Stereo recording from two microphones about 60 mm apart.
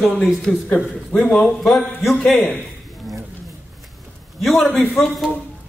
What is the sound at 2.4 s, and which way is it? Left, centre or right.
Speech, left.